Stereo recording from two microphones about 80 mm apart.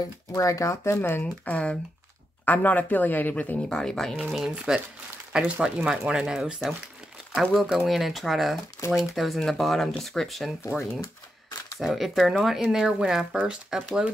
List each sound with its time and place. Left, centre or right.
0.3 s speech: left
1.2 s speech: centre
3.6 s speech: centre
4.2 s speech: centre
11.8 s speech: centre